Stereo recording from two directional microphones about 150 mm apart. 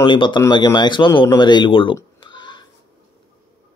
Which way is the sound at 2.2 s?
30° left (ahead or behind).